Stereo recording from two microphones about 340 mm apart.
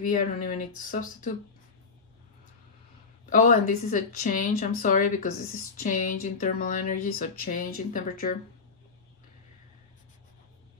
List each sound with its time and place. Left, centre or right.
0.0 s a woman's voice: left
3.3 s a woman's voice: left